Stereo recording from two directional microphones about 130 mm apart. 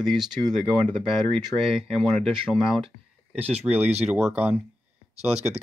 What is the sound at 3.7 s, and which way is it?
Speech, 55° right (ahead or behind).